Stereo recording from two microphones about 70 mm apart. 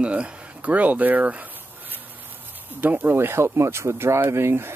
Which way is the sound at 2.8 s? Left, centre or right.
Right.